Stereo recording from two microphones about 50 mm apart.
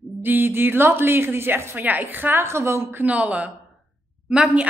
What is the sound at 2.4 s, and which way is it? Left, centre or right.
Speech, right.